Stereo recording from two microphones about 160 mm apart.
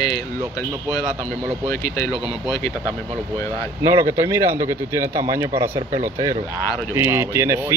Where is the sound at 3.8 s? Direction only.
20° right (ahead or behind).